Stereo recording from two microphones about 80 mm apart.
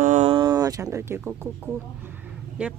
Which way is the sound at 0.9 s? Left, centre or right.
Right.